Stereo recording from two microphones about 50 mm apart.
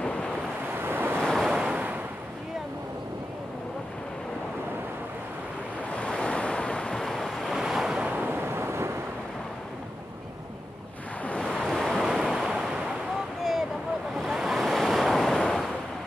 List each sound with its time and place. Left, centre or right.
0.0 s waves: left
0.7 s waves: right
1.2 s waves: centre
1.5 s waves: centre
5.9 s waves: centre
7.5 s waves: centre
8.2 s a sound: right
11.3 s waves: centre
11.6 s waves: centre
13.4 s vehicle: centre
14.1 s waves: centre